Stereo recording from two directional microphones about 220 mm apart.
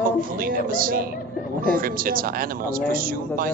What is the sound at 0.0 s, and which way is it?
A woman's voice, 40° right (ahead or behind).